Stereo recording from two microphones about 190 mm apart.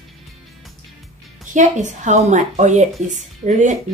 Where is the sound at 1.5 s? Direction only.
40° right (ahead or behind).